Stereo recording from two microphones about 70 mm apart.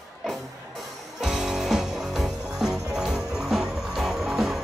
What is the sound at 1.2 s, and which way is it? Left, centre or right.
Music, centre.